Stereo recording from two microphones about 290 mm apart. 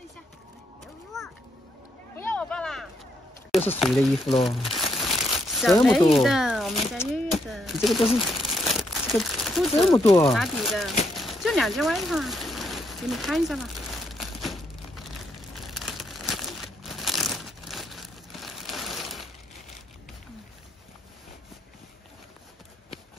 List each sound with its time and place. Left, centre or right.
2.1 s a sound: centre
3.5 s speech: centre
8.4 s crumpling: centre
9.9 s speech: centre
10.3 s speech: centre
11.1 s rain: centre